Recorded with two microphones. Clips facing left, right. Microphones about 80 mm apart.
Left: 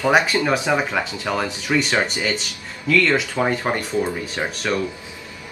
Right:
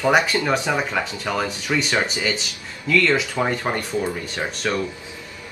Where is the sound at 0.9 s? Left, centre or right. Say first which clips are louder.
Left 1 dB; centre.